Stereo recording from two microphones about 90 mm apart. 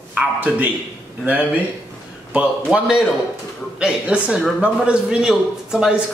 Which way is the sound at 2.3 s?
10° right (ahead or behind).